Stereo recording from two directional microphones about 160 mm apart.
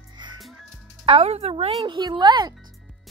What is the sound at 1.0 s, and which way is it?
Speech, 35° right (ahead or behind).